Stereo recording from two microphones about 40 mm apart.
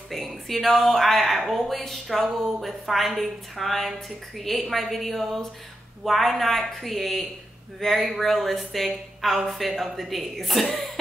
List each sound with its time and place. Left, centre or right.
0.1 s speech: centre